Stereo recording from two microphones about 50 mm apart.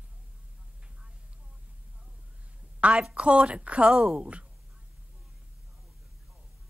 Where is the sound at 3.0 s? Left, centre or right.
Centre.